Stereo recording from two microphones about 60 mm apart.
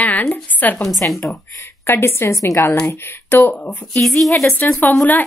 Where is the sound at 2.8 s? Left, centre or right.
Left.